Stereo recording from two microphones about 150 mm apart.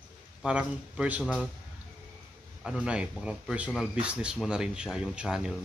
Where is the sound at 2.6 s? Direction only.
5° right (ahead or behind).